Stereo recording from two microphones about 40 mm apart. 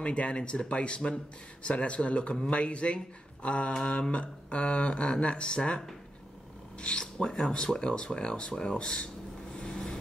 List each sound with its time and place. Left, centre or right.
0.0 s speech: left
3.4 s mantra: left
3.7 s speech: left
6.8 s speech: left
9.6 s vehicle: left